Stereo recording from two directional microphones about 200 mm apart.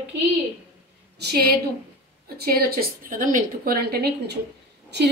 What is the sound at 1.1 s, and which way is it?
A woman's voice, 50° right (ahead or behind).